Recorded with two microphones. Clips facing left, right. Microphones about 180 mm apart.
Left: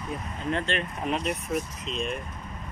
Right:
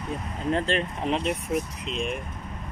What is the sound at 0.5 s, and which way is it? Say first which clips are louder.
Speech: right 4 dB; 35° right (ahead or behind).